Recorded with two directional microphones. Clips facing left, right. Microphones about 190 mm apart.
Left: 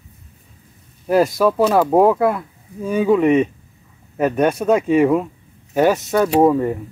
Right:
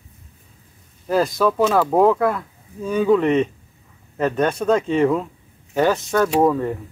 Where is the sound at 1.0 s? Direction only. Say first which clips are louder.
Left 3 dB; 10° left (ahead or behind).